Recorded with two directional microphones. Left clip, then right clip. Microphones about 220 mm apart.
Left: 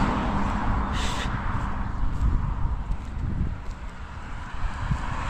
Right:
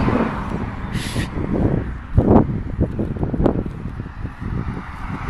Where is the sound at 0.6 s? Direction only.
30° right (ahead or behind).